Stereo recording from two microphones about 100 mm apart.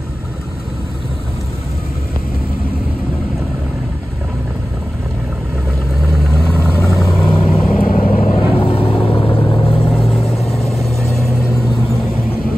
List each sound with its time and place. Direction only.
6.1 s vehicle: centre (ahead or behind)
6.5 s vehicle: 25° left (ahead or behind)
7.2 s vehicle: 60° left (ahead or behind)
10.5 s vehicle: centre (ahead or behind)